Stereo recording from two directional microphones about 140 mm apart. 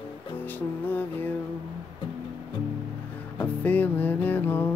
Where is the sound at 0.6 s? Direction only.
15° left (ahead or behind).